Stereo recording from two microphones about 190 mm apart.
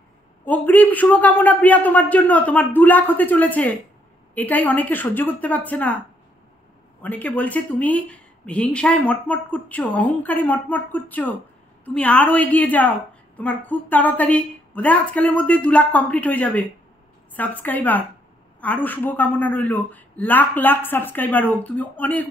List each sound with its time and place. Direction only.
0.5 s speech: 10° left (ahead or behind)
7.0 s speech: 10° left (ahead or behind)